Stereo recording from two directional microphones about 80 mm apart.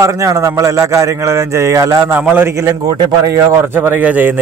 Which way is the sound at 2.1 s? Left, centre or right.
Right.